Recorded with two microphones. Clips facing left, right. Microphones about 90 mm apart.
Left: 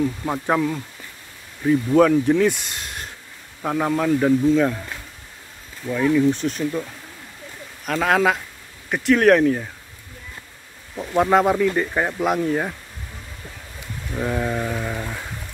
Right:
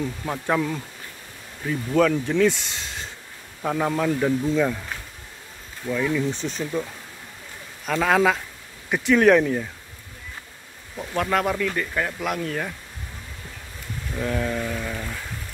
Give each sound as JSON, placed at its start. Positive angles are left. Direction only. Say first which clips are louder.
{"t": 0.0, "sound": "speech", "louder": "left 5 dB", "side_deg": 10}
{"t": 5.9, "sound": "speech", "louder": "left 6 dB", "side_deg": 5}
{"t": 11.1, "sound": "speech", "louder": "left 6 dB", "side_deg": 25}
{"t": 14.1, "sound": "speech", "louder": "left 2 dB", "side_deg": 15}